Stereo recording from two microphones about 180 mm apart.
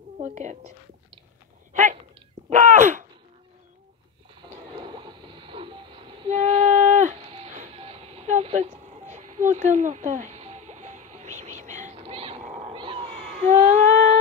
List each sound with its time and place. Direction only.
0.2 s a woman's voice: 40° right (ahead or behind)
1.7 s hiccup: 45° right (ahead or behind)
2.5 s speech: 45° right (ahead or behind)
4.4 s a sound: 25° right (ahead or behind)
9.1 s music: 45° right (ahead or behind)